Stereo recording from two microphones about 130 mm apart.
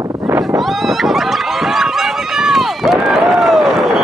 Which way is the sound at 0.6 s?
Centre (ahead or behind).